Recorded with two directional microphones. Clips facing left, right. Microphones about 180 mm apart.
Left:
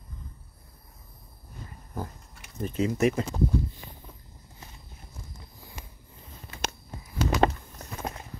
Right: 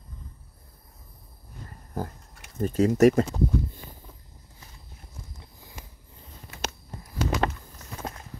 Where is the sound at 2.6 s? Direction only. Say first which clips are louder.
Right 6 dB; 45° right (ahead or behind).